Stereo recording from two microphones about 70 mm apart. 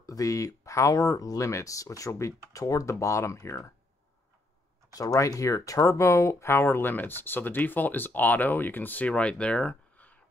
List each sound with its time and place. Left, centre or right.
0.0 s speech: left
4.9 s speech: left